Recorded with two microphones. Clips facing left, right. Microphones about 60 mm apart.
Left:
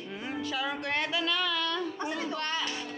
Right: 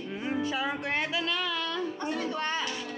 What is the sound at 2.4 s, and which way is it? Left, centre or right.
Music, centre.